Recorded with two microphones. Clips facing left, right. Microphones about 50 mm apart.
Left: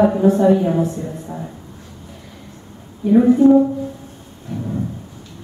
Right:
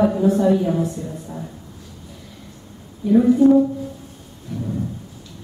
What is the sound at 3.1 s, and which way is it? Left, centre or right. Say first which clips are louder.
Speech: left 2 dB; left.